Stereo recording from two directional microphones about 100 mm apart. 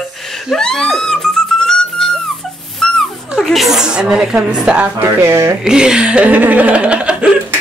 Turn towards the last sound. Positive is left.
turn(degrees=-10)  # may be behind; listen again after turning